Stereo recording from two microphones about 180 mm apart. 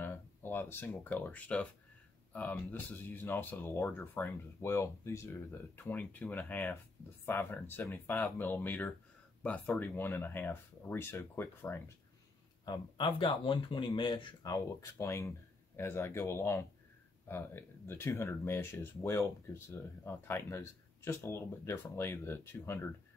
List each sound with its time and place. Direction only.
0.0 s speech: 10° left (ahead or behind)
12.6 s speech: 25° left (ahead or behind)